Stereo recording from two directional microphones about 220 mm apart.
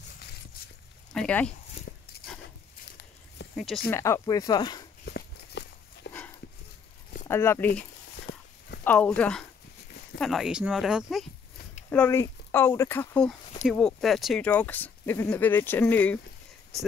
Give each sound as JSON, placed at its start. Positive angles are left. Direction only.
{"t": 1.1, "sound": "speech", "side_deg": 5}
{"t": 1.9, "sound": "a sound", "side_deg": 50}
{"t": 3.5, "sound": "speech", "side_deg": 0}
{"t": 3.9, "sound": "speech", "side_deg": 15}
{"t": 5.0, "sound": "walk", "side_deg": 50}
{"t": 7.2, "sound": "speech", "side_deg": 10}
{"t": 8.3, "sound": "horse", "side_deg": 50}
{"t": 8.8, "sound": "speech", "side_deg": 5}
{"t": 11.9, "sound": "speech", "side_deg": 10}